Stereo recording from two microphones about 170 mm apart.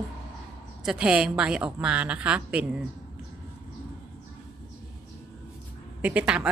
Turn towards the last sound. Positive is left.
turn(degrees=-5)  # may be behind; listen again after turning